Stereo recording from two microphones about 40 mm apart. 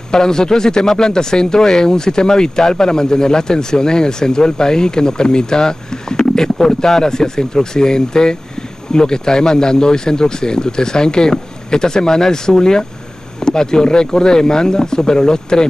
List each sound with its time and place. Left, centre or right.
0.1 s speech: centre